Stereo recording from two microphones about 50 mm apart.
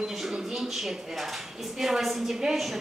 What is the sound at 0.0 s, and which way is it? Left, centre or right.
Speech, centre.